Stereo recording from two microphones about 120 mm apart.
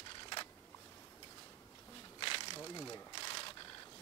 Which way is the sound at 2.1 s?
45° left (ahead or behind).